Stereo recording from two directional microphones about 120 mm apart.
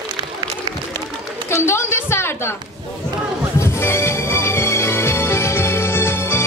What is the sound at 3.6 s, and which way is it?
Music, 20° left (ahead or behind).